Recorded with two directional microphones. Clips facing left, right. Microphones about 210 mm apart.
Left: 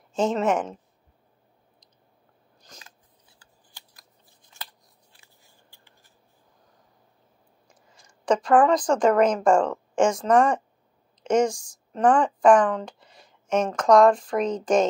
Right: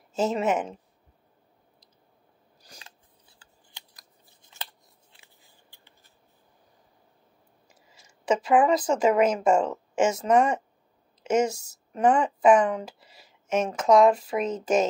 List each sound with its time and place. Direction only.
0.1 s speech: 5° right (ahead or behind)
3.3 s scissors: 20° right (ahead or behind)
5.7 s a sound: 20° right (ahead or behind)
7.6 s speech: 5° right (ahead or behind)